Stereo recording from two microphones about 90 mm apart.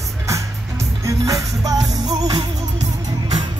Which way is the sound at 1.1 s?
40° right (ahead or behind).